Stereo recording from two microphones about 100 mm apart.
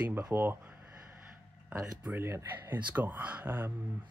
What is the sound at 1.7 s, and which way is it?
Speech, 15° right (ahead or behind).